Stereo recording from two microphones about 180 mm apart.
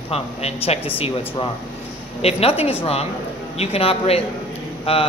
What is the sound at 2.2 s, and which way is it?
Speech, 35° left (ahead or behind).